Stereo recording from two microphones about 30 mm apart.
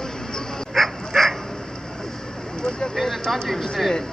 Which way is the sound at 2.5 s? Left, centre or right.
Centre.